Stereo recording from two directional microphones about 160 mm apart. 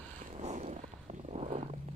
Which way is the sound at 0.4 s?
45° right (ahead or behind).